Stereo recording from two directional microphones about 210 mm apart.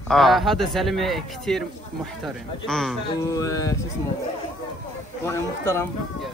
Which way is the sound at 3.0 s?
15° left (ahead or behind).